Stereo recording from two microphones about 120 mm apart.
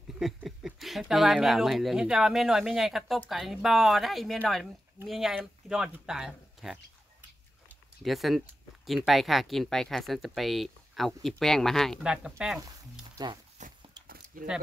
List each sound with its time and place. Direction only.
0.2 s speech: 5° right (ahead or behind)
8.0 s speech: centre (ahead or behind)
13.6 s a sound: 80° right
14.3 s speech: 90° right